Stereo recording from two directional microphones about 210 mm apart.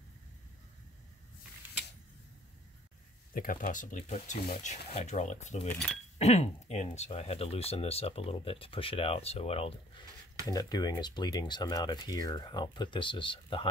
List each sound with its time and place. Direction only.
3.3 s speech: 40° left (ahead or behind)
5.7 s speech: 5° left (ahead or behind)
6.1 s speech: 30° left (ahead or behind)